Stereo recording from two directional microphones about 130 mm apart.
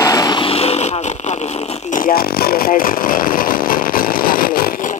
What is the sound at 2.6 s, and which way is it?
Speech, 90° left.